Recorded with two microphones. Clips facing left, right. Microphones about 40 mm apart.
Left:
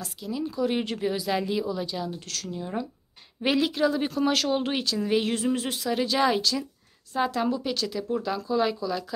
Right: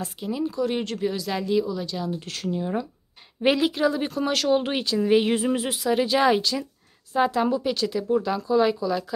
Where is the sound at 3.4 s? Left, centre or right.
Centre.